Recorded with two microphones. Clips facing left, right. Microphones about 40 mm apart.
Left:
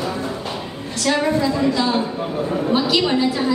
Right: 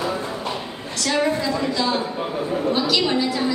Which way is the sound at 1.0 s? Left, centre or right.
Centre.